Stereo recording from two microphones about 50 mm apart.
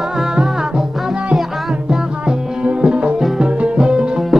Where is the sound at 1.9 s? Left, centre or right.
Centre.